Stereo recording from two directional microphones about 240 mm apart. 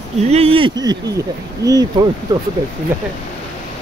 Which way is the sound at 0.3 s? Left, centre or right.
Right.